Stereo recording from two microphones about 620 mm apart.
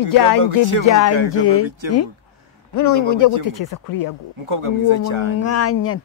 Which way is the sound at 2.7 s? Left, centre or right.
Left.